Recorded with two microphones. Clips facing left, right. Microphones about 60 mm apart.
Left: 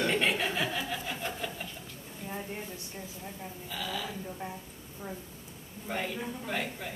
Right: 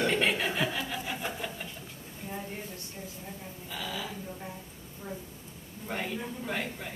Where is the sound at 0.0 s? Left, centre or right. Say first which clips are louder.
Right 1 dB; centre.